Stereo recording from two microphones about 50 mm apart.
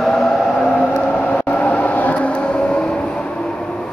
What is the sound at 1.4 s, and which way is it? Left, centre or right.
Train, left.